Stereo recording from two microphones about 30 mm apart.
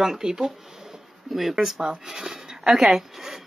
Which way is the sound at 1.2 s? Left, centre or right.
Centre.